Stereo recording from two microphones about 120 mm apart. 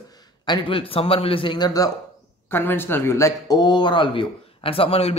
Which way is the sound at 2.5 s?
20° left (ahead or behind).